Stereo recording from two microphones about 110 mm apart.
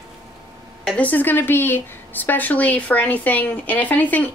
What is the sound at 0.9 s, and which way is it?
Speech, 15° left (ahead or behind).